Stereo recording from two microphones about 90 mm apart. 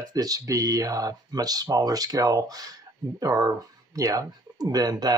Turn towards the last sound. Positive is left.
turn(degrees=-45)  # may be behind; listen again after turning